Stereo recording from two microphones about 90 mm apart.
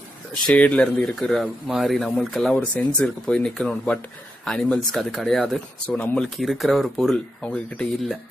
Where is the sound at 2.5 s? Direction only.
15° left (ahead or behind).